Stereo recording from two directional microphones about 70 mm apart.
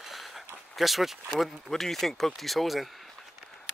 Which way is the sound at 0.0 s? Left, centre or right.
Centre.